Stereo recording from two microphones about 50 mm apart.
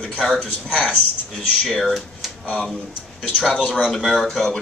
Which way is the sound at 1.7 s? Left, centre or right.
Centre.